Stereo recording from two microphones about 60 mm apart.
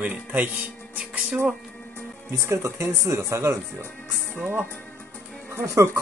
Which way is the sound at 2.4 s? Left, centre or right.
Right.